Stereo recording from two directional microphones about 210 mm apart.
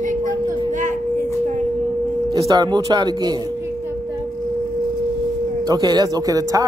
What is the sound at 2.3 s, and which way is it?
Speech, 20° right (ahead or behind).